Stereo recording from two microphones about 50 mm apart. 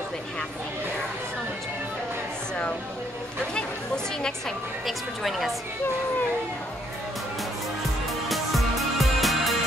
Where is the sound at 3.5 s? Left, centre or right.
Centre.